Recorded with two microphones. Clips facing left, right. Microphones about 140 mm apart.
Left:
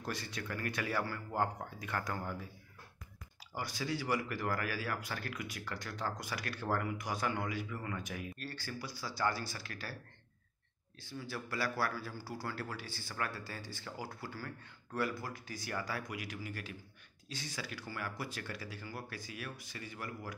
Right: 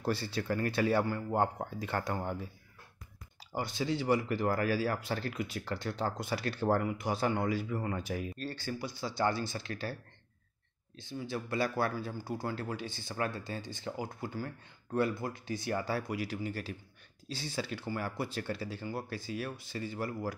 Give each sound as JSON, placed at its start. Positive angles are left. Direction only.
{"t": 0.0, "sound": "speech", "side_deg": -30}
{"t": 3.5, "sound": "speech", "side_deg": -25}
{"t": 11.0, "sound": "speech", "side_deg": -20}